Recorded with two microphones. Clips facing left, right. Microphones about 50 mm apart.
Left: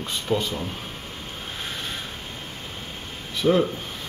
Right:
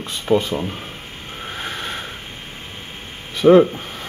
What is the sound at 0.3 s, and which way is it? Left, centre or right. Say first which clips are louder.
Speech: right 8 dB; right.